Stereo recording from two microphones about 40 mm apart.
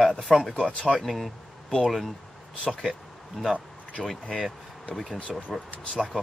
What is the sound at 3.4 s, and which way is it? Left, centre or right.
Speech, centre.